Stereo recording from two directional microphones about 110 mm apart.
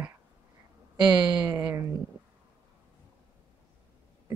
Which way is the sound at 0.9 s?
40° right (ahead or behind).